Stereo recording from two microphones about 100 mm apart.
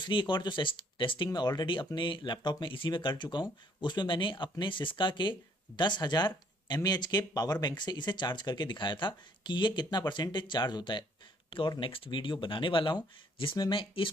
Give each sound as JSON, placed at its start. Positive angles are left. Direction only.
{"t": 0.0, "sound": "speech", "side_deg": 55}
{"t": 11.8, "sound": "speech", "side_deg": 60}